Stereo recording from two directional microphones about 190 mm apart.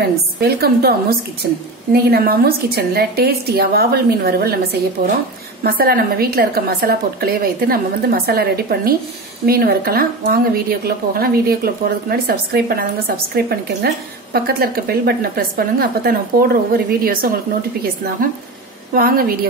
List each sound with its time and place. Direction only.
0.4 s a woman's voice: 55° right (ahead or behind)
5.6 s a woman's voice: 55° right (ahead or behind)
18.9 s a woman's voice: 50° right (ahead or behind)